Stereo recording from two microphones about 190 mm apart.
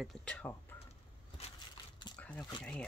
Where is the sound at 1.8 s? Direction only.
25° left (ahead or behind).